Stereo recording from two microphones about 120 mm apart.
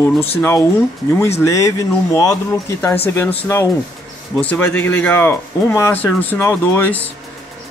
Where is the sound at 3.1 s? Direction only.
15° left (ahead or behind).